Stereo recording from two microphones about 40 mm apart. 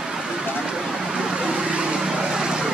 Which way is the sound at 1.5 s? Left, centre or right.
Right.